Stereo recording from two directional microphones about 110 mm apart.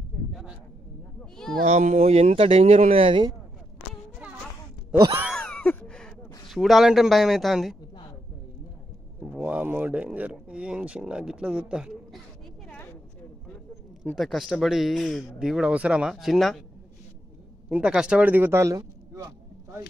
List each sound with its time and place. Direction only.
0.3 s a sound: 5° right (ahead or behind)
1.7 s speech: 90° right; by 3.3 s 55° right (ahead or behind)
5.3 s a sound: 10° left (ahead or behind)
6.5 s speech: centre (ahead or behind)
9.2 s speech: 15° right (ahead or behind)
14.1 s speech: centre (ahead or behind)
17.6 s speech: 10° right (ahead or behind); by 19.3 s 35° right (ahead or behind)